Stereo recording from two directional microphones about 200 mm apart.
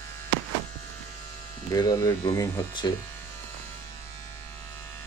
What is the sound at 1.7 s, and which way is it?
Speech, 20° left (ahead or behind).